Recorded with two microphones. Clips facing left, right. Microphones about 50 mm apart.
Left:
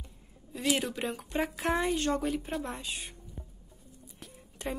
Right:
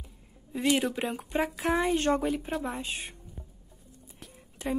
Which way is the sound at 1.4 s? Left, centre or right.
Centre.